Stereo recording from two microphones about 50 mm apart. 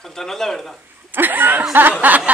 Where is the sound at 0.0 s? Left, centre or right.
Centre.